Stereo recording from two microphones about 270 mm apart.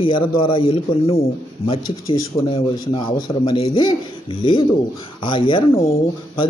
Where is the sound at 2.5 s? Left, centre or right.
Centre.